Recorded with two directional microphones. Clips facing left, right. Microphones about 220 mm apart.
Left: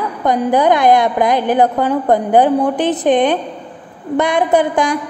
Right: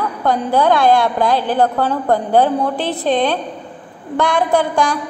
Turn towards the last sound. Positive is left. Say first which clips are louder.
# left 2 dB
turn(degrees=20)  # may be behind; listen again after turning